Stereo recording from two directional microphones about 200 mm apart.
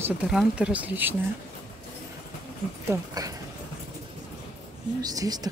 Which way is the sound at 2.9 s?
20° right (ahead or behind).